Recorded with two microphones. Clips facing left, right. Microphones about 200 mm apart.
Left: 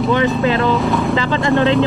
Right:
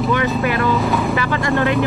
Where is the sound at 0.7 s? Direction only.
Centre (ahead or behind).